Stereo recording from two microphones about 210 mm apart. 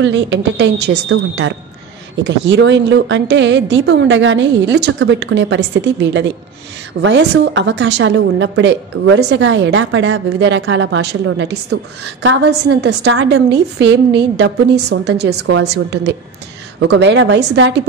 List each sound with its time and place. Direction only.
0.0 s a woman's voice: 60° right (ahead or behind)